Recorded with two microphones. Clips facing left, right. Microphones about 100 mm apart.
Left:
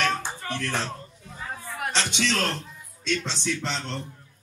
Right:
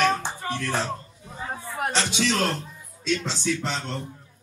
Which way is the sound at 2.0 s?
5° right (ahead or behind).